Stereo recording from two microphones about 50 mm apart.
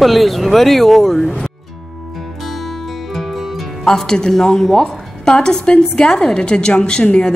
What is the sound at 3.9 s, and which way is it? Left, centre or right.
A woman's voice, centre.